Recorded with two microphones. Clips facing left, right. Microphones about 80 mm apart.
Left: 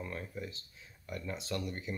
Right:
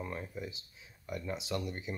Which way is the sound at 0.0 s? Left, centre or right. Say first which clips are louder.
Right 1 dB; centre.